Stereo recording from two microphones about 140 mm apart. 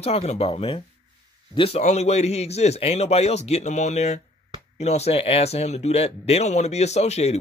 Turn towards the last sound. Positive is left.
turn(degrees=50)  # may be behind; listen again after turning